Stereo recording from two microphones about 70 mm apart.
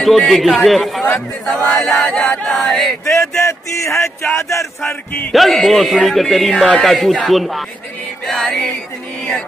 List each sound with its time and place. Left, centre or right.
0.3 s speech: centre
3.1 s speech: left
5.3 s speech: centre